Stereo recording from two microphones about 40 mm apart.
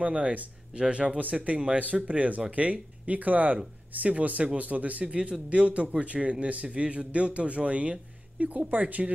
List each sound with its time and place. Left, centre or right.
0.0 s speech: right
1.8 s a man's voice: right